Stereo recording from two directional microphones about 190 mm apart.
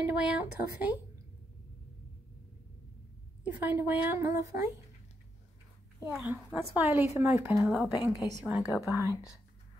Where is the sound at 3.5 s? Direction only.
10° right (ahead or behind).